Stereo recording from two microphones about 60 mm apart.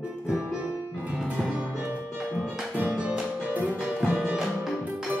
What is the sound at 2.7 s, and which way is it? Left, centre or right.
Music, right.